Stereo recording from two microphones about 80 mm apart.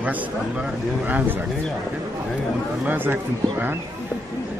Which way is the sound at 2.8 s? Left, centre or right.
Right.